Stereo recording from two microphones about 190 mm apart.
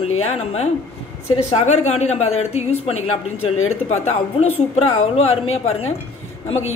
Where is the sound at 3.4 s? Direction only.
90° left.